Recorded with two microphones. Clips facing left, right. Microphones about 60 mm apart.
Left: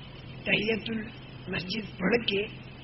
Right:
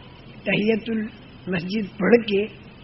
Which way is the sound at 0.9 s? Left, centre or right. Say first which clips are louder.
Right 8 dB; right.